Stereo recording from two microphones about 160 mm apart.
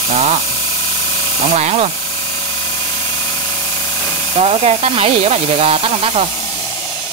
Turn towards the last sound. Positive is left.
turn(degrees=-35)  # may be behind; listen again after turning